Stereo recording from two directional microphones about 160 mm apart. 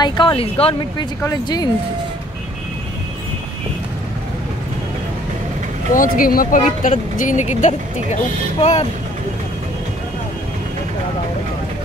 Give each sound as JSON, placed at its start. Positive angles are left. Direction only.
{"t": 0.0, "sound": "speech", "side_deg": 30}
{"t": 1.2, "sound": "speech", "side_deg": 25}
{"t": 5.9, "sound": "speech", "side_deg": 60}